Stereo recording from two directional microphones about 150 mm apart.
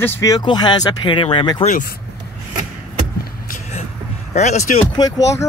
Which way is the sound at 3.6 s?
45° left (ahead or behind).